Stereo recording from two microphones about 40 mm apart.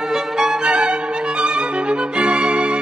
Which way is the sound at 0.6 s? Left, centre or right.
Right.